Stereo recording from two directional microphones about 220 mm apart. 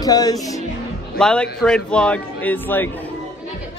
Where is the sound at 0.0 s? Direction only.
15° left (ahead or behind).